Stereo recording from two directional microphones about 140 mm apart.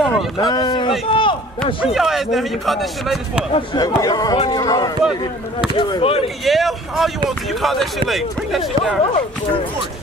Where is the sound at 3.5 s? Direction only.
30° left (ahead or behind).